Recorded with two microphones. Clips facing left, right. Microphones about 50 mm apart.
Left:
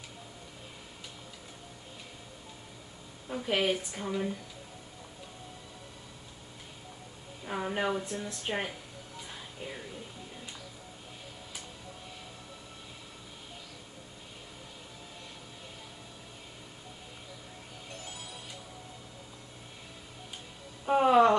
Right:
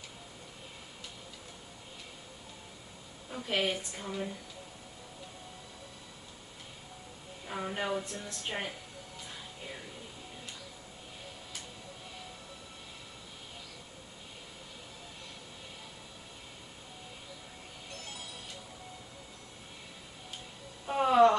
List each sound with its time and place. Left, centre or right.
3.3 s speech: centre
7.4 s speech: centre
20.8 s a sound: centre